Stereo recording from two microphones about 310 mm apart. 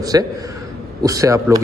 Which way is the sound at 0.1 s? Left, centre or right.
Centre.